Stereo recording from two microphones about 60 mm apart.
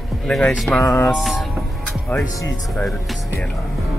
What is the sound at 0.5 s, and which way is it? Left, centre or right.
Speech, centre.